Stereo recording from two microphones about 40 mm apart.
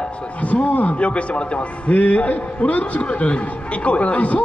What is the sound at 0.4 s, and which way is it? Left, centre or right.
A man's voice, left.